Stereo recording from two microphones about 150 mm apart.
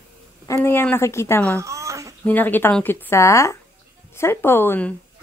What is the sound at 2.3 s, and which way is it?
Speech, 10° left (ahead or behind).